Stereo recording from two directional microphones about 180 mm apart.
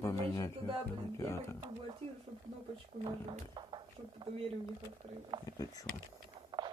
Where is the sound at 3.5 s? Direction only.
25° right (ahead or behind).